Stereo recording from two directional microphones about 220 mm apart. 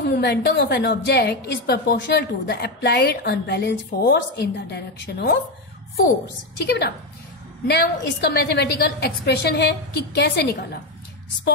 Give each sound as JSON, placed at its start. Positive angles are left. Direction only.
{"t": 0.0, "sound": "a woman's voice", "side_deg": 50}
{"t": 6.6, "sound": "a woman's voice", "side_deg": 50}